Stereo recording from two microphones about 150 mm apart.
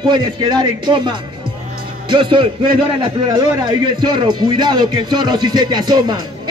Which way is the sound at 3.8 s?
30° right (ahead or behind).